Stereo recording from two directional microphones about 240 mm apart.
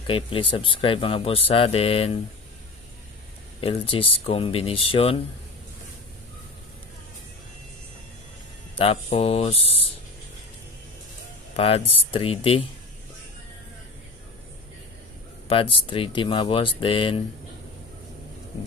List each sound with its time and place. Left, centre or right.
0.0 s speech: left
3.6 s speech: left
8.7 s speech: left
11.5 s speech: left
15.4 s speech: left